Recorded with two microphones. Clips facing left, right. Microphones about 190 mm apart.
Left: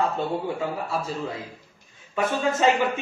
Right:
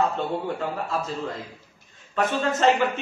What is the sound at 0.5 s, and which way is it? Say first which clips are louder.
A man's voice: even; 10° left (ahead or behind).